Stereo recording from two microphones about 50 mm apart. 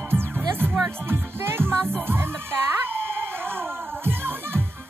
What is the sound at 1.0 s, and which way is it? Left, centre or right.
Music, right.